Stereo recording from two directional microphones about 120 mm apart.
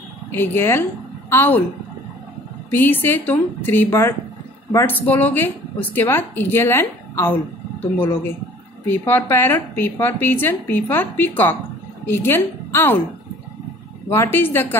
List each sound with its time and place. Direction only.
0.3 s speech: 20° left (ahead or behind)
2.7 s speech: 15° left (ahead or behind)
8.8 s speech: 15° left (ahead or behind)
14.1 s speech: 20° left (ahead or behind)